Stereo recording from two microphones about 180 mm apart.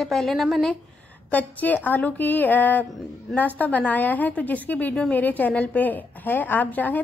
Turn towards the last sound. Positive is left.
turn(degrees=10)  # may be behind; listen again after turning